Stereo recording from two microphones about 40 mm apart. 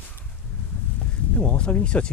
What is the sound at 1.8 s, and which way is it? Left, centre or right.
Speech, left.